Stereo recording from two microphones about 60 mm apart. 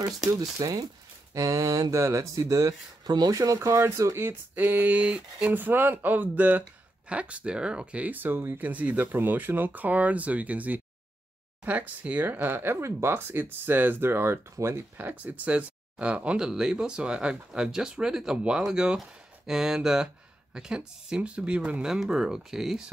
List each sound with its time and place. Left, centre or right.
0.3 s speech: right
1.3 s speech: right
3.5 s speech: right
4.2 s speech: right
8.6 s speech: right
12.4 s speech: right
15.0 s speech: right; by 22.8 s centre